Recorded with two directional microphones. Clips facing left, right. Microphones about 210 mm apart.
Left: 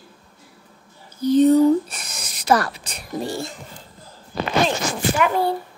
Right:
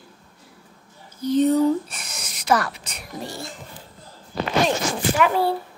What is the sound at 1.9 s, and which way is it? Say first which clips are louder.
Speech: left 1 dB; 35° left (ahead or behind).